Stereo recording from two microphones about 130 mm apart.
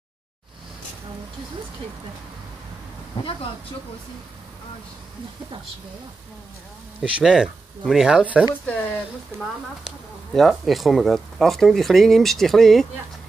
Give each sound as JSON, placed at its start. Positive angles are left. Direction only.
{"t": 7.0, "sound": "speech", "side_deg": -5}
{"t": 9.3, "sound": "speech", "side_deg": -20}
{"t": 10.3, "sound": "speech", "side_deg": 0}